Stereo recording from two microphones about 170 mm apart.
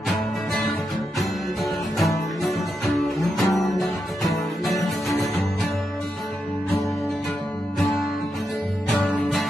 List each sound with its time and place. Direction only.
1.6 s music: centre (ahead or behind)
8.9 s music: centre (ahead or behind)